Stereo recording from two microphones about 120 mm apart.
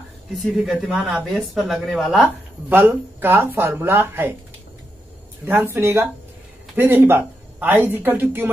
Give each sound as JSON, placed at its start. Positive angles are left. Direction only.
{"t": 0.3, "sound": "speech", "side_deg": 0}
{"t": 2.7, "sound": "speech", "side_deg": -15}
{"t": 5.5, "sound": "speech", "side_deg": -20}